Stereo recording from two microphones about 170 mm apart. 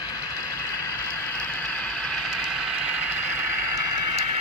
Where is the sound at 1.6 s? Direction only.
5° left (ahead or behind); by 4.1 s 20° right (ahead or behind).